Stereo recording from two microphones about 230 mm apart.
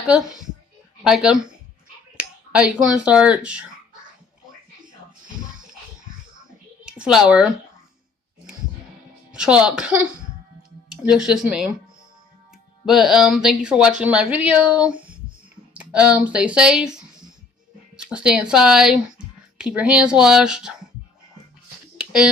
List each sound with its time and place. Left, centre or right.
1.0 s speech: centre
4.8 s music: right
6.9 s speech: centre
9.3 s speech: centre
12.8 s speech: centre
17.9 s speech: centre
21.9 s a sound: centre